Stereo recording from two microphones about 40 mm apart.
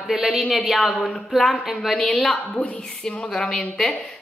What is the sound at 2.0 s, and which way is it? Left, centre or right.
A woman's voice, centre.